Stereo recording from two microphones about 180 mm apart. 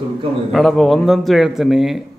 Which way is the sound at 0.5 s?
Centre (ahead or behind).